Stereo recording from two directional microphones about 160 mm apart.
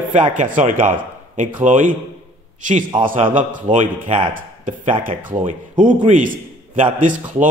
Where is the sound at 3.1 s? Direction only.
55° right (ahead or behind).